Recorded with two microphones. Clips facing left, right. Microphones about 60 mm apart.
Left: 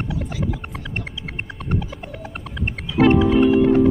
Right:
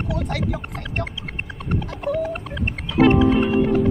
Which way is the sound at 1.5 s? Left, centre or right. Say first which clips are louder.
Left 1 dB; centre.